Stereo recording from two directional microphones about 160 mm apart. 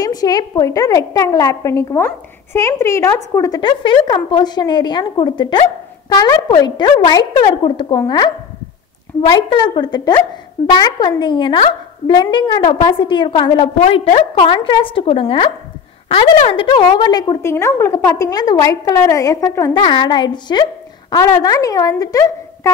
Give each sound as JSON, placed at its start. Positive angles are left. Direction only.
{"t": 0.0, "sound": "a woman's voice", "side_deg": 25}
{"t": 19.8, "sound": "a woman's voice", "side_deg": 30}